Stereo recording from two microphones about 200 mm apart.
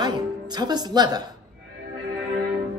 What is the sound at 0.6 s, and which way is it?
Speech, 20° right (ahead or behind).